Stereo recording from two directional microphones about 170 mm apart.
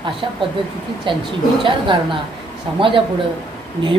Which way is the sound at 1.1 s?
30° right (ahead or behind).